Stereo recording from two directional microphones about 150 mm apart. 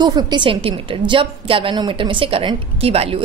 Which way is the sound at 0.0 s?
30° right (ahead or behind).